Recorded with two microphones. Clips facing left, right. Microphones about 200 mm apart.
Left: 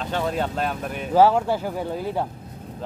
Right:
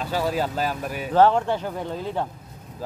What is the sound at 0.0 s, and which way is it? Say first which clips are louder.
Speech: even; 5° right (ahead or behind).